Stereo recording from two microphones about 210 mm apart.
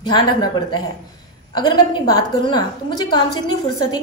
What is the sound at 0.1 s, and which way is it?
A woman's voice, 20° left (ahead or behind).